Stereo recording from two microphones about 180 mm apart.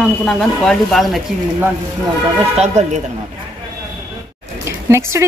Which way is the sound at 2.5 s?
40° right (ahead or behind).